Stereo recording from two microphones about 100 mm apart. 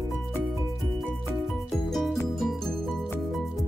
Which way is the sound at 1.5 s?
5° left (ahead or behind).